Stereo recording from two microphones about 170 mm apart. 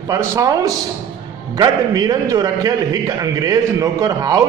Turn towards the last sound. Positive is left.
turn(degrees=-20)  # may be behind; listen again after turning